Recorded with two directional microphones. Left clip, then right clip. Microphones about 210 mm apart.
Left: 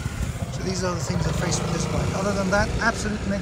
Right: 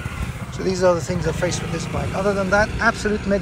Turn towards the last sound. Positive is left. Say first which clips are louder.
# right 5 dB
turn(degrees=5)  # may be behind; listen again after turning